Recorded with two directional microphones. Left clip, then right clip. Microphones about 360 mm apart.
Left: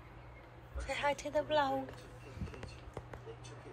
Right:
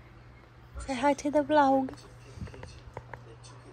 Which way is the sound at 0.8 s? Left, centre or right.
Centre.